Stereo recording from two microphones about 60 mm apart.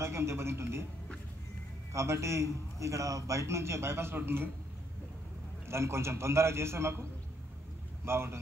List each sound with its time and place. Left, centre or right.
0.0 s a man's voice: right
1.9 s a man's voice: right
5.7 s a man's voice: right